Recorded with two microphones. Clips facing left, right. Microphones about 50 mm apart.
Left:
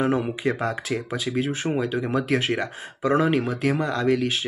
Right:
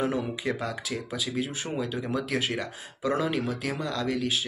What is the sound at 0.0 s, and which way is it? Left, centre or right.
Speech, left.